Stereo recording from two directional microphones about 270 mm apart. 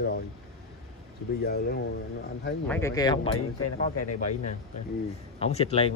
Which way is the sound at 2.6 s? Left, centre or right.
Centre.